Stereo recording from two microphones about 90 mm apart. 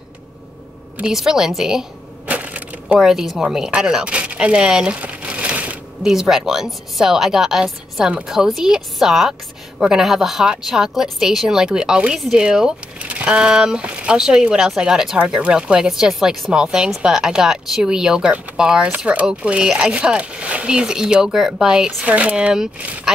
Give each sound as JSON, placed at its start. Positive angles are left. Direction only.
{"t": 0.9, "sound": "a woman's voice", "side_deg": -5}
{"t": 2.2, "sound": "crushing", "side_deg": -15}
{"t": 3.0, "sound": "a woman's voice", "side_deg": -5}